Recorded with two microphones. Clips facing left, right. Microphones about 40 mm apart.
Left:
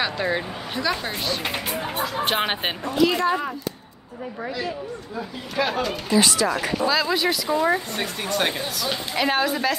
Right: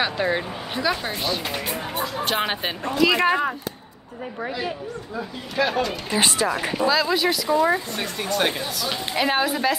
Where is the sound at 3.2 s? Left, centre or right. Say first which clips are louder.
Right 2 dB; right.